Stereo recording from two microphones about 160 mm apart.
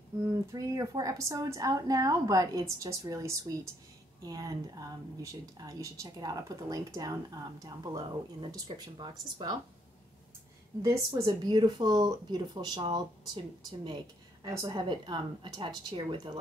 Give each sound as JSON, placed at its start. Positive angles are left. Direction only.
{"t": 0.3, "sound": "speech", "side_deg": -20}
{"t": 10.8, "sound": "speech", "side_deg": -20}